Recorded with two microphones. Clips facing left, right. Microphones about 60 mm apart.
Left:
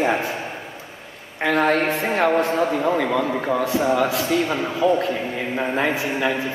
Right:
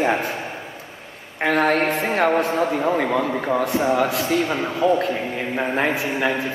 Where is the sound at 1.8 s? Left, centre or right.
Centre.